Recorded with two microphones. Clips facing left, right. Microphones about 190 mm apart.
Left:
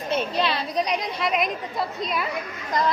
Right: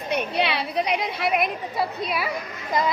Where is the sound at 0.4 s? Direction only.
65° right (ahead or behind).